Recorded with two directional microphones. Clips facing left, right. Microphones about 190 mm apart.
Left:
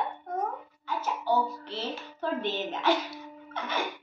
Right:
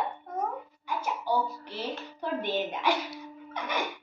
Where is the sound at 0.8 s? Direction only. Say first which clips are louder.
Left 1 dB; 15° right (ahead or behind).